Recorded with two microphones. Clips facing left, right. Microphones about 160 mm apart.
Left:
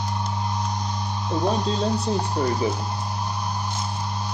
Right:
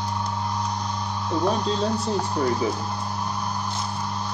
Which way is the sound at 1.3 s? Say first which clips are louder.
Even; 20° left (ahead or behind).